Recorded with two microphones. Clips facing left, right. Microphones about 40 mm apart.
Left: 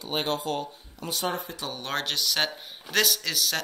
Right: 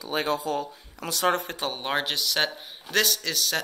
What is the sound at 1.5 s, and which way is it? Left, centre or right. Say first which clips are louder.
Speech: right 4 dB; right.